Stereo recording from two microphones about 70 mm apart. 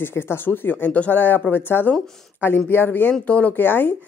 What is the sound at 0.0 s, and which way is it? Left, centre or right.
Speech, left.